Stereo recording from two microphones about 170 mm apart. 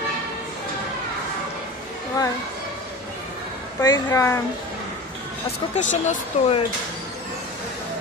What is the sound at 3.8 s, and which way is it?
Speech, 20° left (ahead or behind).